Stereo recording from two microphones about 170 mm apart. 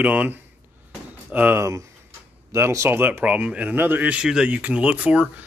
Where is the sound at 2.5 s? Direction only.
15° right (ahead or behind).